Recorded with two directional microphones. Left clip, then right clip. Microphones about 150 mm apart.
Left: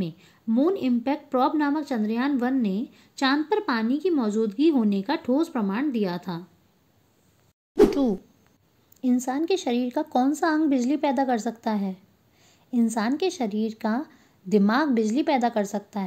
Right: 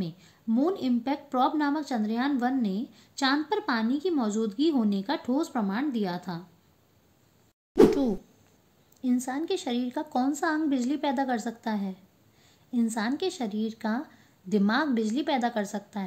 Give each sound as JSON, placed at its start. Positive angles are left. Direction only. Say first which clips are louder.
{"t": 0.0, "sound": "a woman's voice", "louder": "left 4 dB", "side_deg": 25}
{"t": 7.9, "sound": "a sound", "louder": "left 2 dB", "side_deg": 15}
{"t": 9.0, "sound": "speech", "louder": "left 4 dB", "side_deg": 35}